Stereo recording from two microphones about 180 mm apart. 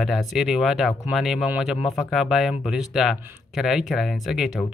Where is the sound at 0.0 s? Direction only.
Centre (ahead or behind).